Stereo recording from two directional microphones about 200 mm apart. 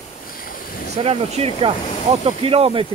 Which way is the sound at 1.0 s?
30° right (ahead or behind).